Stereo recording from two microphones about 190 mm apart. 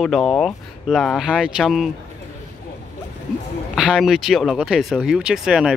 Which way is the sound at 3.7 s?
5° right (ahead or behind).